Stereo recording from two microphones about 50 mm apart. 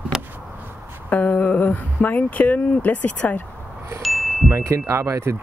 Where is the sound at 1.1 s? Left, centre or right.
Left.